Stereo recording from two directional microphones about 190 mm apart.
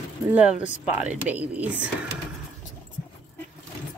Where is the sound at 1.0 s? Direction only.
10° right (ahead or behind).